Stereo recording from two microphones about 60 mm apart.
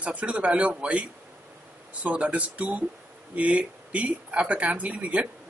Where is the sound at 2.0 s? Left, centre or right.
Right.